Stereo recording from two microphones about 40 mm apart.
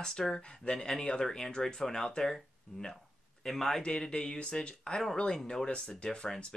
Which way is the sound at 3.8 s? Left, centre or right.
Left.